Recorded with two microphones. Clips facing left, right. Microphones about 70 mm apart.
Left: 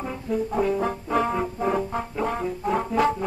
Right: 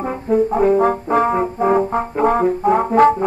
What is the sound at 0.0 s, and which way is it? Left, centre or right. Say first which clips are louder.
Brass instrument: right 10 dB; right.